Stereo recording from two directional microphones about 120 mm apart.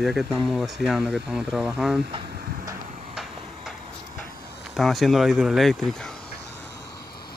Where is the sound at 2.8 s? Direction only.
90° right.